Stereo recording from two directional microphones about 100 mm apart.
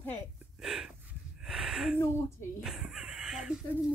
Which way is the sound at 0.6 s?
5° right (ahead or behind).